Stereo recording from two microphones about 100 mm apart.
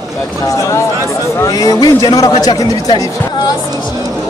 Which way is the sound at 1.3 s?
35° left (ahead or behind).